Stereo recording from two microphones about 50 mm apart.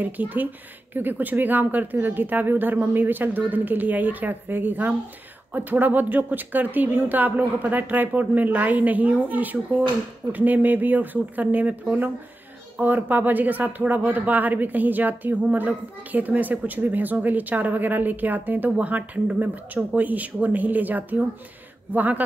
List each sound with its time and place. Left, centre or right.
0.0 s speech: right
18.8 s speech: right